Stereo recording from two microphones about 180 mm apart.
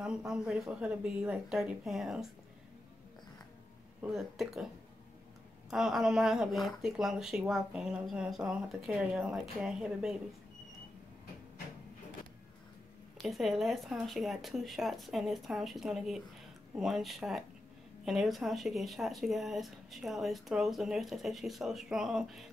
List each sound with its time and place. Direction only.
0.3 s speech: 5° right (ahead or behind)
4.1 s speech: centre (ahead or behind)
5.7 s speech: centre (ahead or behind)
13.2 s speech: centre (ahead or behind)